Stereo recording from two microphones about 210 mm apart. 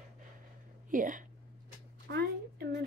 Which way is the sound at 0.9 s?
40° right (ahead or behind).